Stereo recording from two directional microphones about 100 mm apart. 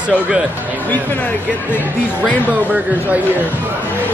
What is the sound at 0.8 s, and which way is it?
Speech, 15° left (ahead or behind).